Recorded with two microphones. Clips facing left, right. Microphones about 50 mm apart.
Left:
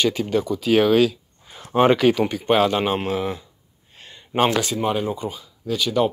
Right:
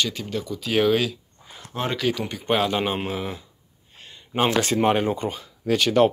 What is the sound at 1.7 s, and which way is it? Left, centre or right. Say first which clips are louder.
Speech: left 12 dB; left.